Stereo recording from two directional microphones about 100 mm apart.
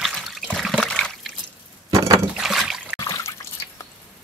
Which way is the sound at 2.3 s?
5° right (ahead or behind).